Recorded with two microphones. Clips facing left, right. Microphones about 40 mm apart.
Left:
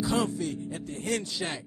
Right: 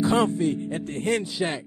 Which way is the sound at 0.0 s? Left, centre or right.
Right.